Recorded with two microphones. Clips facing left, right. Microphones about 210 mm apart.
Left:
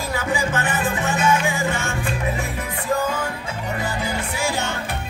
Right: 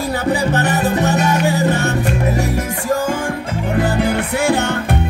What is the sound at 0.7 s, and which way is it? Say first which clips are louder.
Music: right 7 dB; 40° right (ahead or behind).